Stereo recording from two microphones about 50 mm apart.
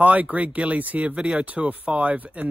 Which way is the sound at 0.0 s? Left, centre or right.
Right.